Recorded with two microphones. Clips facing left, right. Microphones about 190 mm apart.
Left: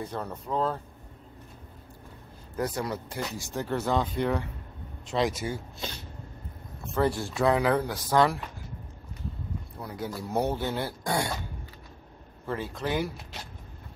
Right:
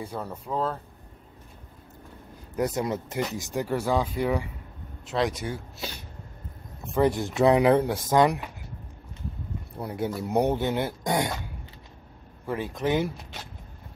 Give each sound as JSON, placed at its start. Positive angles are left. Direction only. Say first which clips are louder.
{"t": 0.0, "sound": "speech", "louder": "even", "side_deg": -10}
{"t": 2.5, "sound": "speech", "louder": "right 4 dB", "side_deg": -20}
{"t": 6.9, "sound": "speech", "louder": "right 3 dB", "side_deg": -15}
{"t": 9.8, "sound": "speech", "louder": "right 6 dB", "side_deg": -25}
{"t": 12.4, "sound": "speech", "louder": "right 4 dB", "side_deg": -15}